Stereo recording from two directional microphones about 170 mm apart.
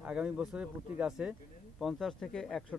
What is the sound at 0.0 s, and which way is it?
Speech, 5° right (ahead or behind).